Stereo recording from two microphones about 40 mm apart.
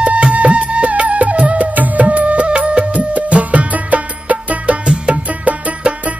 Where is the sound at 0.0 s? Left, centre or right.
Right.